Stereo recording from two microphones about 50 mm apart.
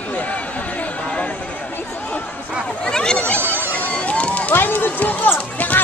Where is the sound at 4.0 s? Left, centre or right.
Left.